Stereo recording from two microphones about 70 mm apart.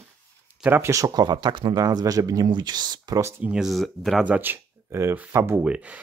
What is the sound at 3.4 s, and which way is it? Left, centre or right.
Speech, centre.